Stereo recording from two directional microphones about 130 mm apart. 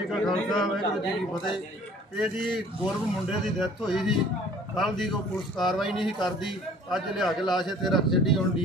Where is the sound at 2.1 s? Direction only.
Centre (ahead or behind).